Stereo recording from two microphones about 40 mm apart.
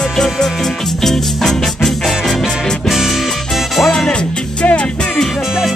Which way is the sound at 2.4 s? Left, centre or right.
Centre.